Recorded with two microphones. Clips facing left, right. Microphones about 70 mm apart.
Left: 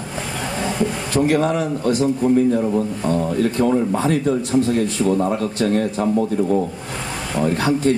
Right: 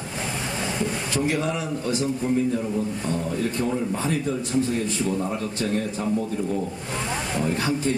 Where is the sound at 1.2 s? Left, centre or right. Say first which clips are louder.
Left 9 dB; left.